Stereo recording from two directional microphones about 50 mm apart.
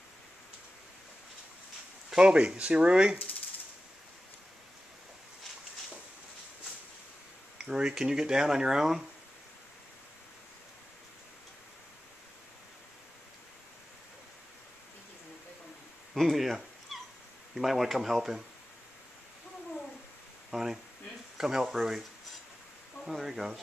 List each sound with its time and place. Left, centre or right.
2.1 s speech: right
7.5 s speech: centre
16.2 s dog: centre
17.6 s speech: centre
20.5 s speech: centre
23.0 s speech: centre